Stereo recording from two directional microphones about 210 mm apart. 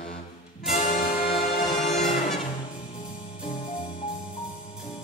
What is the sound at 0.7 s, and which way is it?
Music, 35° left (ahead or behind).